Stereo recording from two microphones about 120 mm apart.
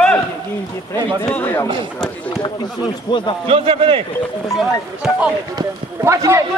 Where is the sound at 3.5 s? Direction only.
50° right (ahead or behind).